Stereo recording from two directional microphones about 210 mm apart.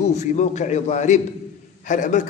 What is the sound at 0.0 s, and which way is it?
A man's voice, 35° left (ahead or behind).